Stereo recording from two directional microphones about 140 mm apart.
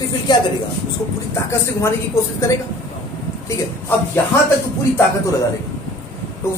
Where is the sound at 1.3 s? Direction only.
20° left (ahead or behind).